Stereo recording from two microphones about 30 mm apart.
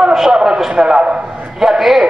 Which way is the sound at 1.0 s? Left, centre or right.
Right.